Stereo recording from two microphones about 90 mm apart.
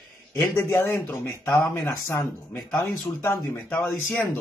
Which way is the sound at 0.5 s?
30° left (ahead or behind).